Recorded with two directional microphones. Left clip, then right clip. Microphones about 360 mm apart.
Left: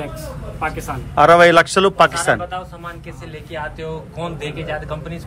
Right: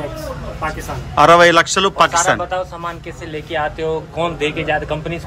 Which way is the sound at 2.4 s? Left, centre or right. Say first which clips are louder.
Right 6 dB; centre.